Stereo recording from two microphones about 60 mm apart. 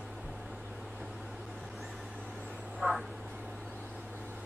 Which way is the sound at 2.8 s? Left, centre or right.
Right.